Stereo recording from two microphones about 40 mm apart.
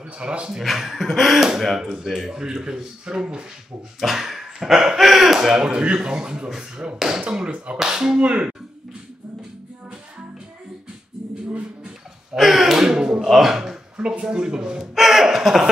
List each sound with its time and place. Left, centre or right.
0.2 s speech: right
0.5 s speech: centre
4.0 s a sound: centre
5.0 s speech: centre
5.7 s speech: right
7.5 s speech: right
7.8 s speech: centre
8.2 s speech: right
12.4 s a sound: centre
13.3 s speech: centre
13.9 s speech: right
15.0 s a sound: centre